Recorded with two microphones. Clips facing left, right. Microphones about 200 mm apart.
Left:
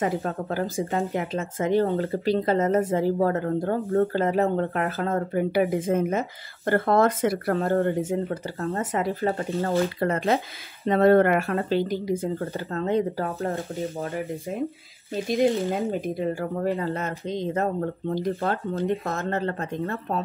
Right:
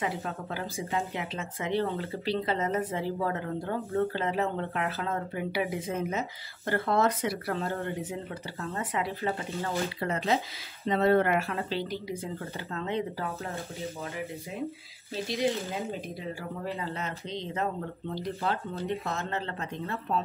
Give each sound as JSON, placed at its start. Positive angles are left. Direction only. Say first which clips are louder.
{"t": 0.0, "sound": "speech", "louder": "left 7 dB", "side_deg": 45}
{"t": 15.2, "sound": "speech", "louder": "left 8 dB", "side_deg": 50}